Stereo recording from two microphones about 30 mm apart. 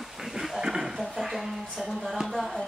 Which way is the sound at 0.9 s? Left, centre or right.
Centre.